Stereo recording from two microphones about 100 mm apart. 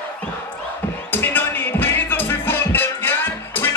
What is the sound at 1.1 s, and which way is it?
Music, 20° left (ahead or behind).